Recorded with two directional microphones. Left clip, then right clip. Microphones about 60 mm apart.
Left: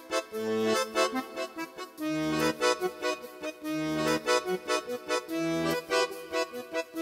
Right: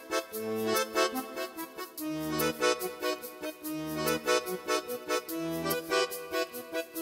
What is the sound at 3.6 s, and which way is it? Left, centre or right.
Accordion, left.